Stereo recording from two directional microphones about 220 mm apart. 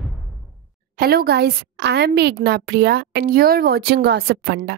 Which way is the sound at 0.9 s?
45° right (ahead or behind).